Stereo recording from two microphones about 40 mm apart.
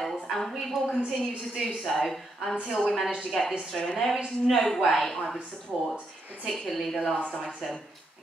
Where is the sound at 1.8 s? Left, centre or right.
Centre.